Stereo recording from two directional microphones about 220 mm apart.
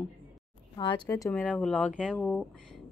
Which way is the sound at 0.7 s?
20° left (ahead or behind).